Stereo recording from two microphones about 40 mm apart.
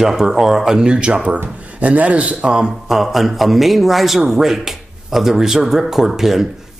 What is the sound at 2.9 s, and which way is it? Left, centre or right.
A man's voice, centre.